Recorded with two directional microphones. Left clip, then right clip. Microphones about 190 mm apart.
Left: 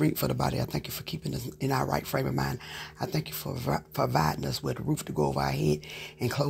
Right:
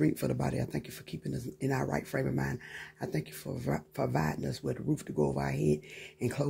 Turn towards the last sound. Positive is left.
turn(degrees=-20)  # may be behind; listen again after turning